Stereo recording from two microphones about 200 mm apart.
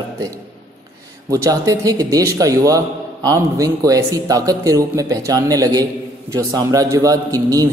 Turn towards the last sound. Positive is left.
turn(degrees=-15)  # may be behind; listen again after turning